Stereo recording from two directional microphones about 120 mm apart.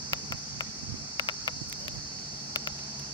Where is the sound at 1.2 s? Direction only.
35° left (ahead or behind).